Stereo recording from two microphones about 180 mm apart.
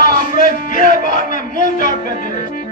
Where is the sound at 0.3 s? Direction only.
50° left (ahead or behind).